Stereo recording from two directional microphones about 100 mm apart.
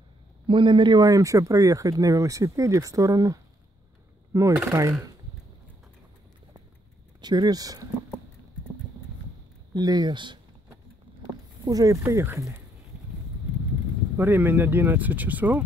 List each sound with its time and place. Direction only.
0.5 s speech: 55° right (ahead or behind)
1.0 s speech: 35° right (ahead or behind)
7.2 s speech: 45° right (ahead or behind)
9.8 s speech: 40° right (ahead or behind)
11.6 s speech: 35° right (ahead or behind)
12.0 s speech: 25° right (ahead or behind)
14.1 s speech: 20° right (ahead or behind)